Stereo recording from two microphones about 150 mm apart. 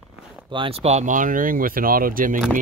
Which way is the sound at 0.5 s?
40° right (ahead or behind).